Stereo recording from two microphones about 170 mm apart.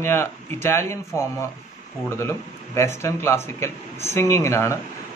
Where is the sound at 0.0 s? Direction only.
15° left (ahead or behind).